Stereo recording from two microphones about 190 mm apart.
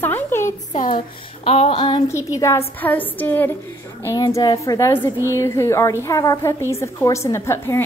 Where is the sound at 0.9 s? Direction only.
30° left (ahead or behind).